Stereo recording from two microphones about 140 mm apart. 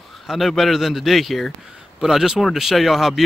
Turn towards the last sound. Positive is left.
turn(degrees=0)  # may be behind; listen again after turning